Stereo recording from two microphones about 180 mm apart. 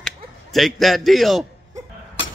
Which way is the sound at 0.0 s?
Centre (ahead or behind).